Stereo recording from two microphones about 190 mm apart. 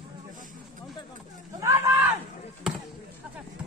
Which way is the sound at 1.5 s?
15° right (ahead or behind).